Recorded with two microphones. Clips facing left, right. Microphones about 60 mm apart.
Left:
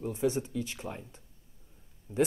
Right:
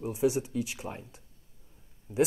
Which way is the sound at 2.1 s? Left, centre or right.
Right.